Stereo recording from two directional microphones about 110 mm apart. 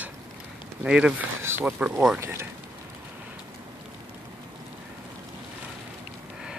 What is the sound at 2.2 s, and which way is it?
Speech, 25° right (ahead or behind).